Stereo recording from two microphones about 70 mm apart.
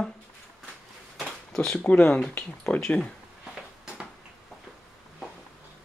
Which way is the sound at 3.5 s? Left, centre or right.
Centre.